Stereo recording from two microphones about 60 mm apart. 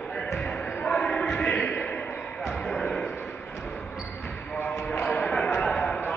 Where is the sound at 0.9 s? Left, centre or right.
Centre.